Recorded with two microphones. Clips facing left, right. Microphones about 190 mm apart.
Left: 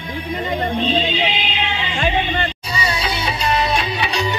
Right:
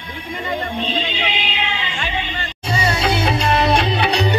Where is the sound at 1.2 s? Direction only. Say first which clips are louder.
Left 2 dB; 30° left (ahead or behind).